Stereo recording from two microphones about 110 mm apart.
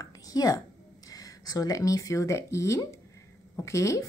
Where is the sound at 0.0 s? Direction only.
35° left (ahead or behind).